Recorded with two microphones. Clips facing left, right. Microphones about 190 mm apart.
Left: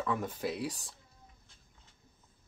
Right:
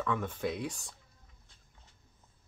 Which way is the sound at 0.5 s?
35° left (ahead or behind).